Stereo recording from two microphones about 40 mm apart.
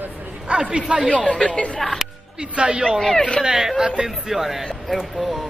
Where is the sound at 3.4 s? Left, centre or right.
Centre.